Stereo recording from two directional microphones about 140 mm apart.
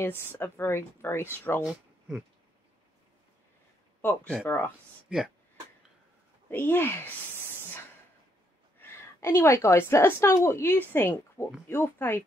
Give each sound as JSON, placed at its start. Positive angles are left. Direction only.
{"t": 0.3, "sound": "speech", "side_deg": 15}
{"t": 1.6, "sound": "speech", "side_deg": -5}
{"t": 4.0, "sound": "speech", "side_deg": 15}
{"t": 5.1, "sound": "speech", "side_deg": -5}
{"t": 6.5, "sound": "speech", "side_deg": 15}
{"t": 8.8, "sound": "a woman's voice", "side_deg": 15}